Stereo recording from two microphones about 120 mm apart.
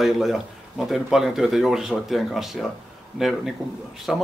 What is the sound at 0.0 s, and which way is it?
Speech, centre (ahead or behind).